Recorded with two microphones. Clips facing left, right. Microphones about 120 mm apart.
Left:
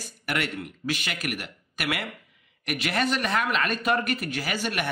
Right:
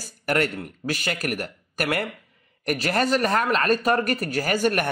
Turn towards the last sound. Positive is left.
turn(degrees=-45)  # may be behind; listen again after turning